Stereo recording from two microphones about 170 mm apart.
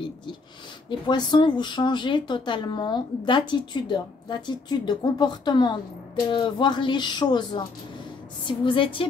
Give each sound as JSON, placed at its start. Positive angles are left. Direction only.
{"t": 0.8, "sound": "speech", "side_deg": 25}